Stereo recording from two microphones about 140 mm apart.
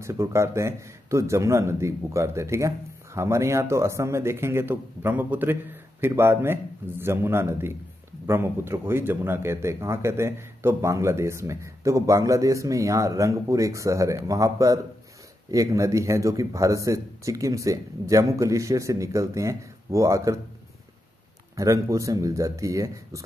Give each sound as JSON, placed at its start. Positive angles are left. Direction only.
{"t": 0.0, "sound": "a man's voice", "side_deg": -20}
{"t": 21.5, "sound": "speech", "side_deg": -20}